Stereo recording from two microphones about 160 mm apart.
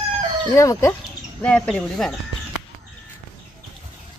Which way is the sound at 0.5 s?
20° left (ahead or behind).